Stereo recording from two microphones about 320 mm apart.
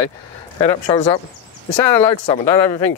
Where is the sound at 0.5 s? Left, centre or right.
Centre.